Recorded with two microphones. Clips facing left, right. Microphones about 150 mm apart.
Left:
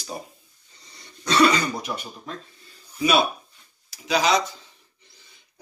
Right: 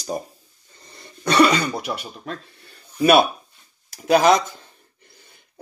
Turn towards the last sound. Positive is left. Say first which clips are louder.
# right 5 dB
turn(degrees=-50)  # may be behind; listen again after turning